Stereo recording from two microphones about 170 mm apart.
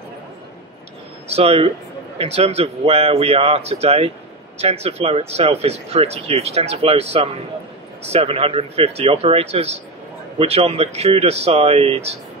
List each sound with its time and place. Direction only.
1.3 s speech: 35° right (ahead or behind)